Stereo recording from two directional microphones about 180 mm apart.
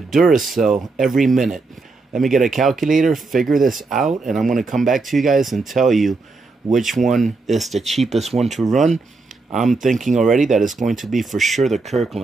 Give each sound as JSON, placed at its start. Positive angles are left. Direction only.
{"t": 0.1, "sound": "speech", "side_deg": 0}
{"t": 10.6, "sound": "speech", "side_deg": -45}
{"t": 10.9, "sound": "speech", "side_deg": 0}